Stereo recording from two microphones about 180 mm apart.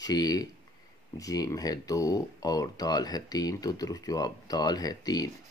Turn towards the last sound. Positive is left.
turn(degrees=20)  # may be behind; listen again after turning